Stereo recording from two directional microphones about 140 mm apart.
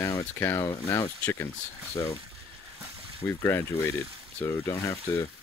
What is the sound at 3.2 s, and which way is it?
Speech, 20° left (ahead or behind).